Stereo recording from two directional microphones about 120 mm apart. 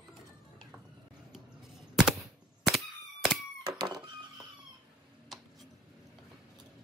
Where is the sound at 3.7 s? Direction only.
35° right (ahead or behind).